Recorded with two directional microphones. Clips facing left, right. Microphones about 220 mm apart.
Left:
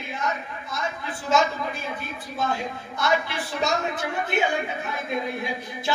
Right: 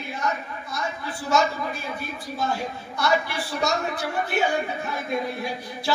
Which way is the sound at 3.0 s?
20° left (ahead or behind).